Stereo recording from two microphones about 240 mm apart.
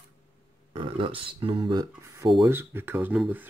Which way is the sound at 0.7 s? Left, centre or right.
Right.